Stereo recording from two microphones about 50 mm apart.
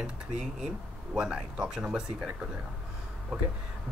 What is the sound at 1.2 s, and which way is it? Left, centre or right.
Speech, centre.